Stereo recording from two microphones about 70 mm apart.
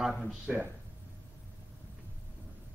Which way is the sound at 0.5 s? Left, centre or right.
Centre.